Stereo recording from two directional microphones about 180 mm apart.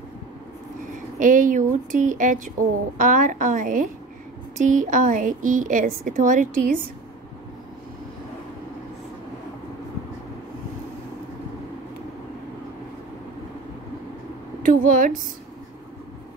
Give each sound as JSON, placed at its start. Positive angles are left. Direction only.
{"t": 0.9, "sound": "a woman's voice", "side_deg": -45}
{"t": 14.6, "sound": "speech", "side_deg": -50}